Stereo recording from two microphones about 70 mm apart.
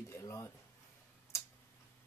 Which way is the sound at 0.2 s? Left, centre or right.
Left.